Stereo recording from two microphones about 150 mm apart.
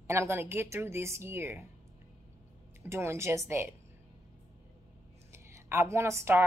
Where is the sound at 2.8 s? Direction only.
20° right (ahead or behind).